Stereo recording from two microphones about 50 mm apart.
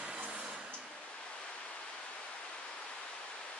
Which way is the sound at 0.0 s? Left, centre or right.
Right.